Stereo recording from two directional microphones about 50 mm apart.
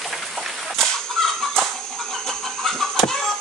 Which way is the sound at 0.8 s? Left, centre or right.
Centre.